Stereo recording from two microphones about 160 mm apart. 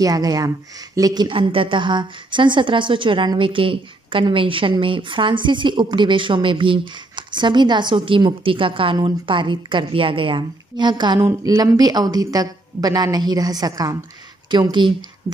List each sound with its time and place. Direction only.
0.0 s speech: 25° right (ahead or behind)